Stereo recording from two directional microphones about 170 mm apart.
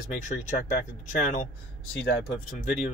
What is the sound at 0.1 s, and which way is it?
Speech, 50° left (ahead or behind).